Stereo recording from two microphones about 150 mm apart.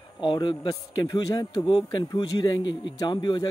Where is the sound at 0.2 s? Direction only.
35° left (ahead or behind).